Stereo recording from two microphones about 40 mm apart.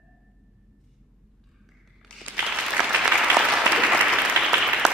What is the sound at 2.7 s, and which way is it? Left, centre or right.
Applause, right.